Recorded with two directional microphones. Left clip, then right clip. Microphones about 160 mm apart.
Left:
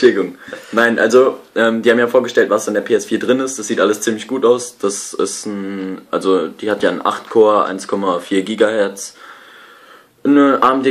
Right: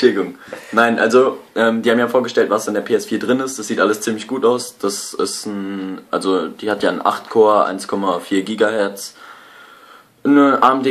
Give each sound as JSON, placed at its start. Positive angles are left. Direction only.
{"t": 0.0, "sound": "speech", "side_deg": 20}
{"t": 10.2, "sound": "speech", "side_deg": 20}